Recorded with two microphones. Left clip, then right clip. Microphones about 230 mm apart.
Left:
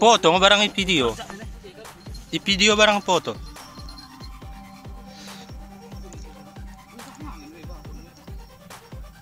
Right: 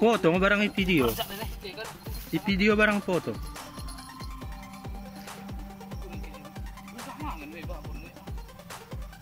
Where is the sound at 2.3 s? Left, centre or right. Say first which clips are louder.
Left 7 dB; centre.